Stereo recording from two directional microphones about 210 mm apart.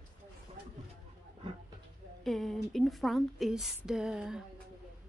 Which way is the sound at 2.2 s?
Centre (ahead or behind).